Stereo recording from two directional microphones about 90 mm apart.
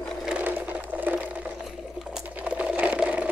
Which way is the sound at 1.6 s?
5° right (ahead or behind).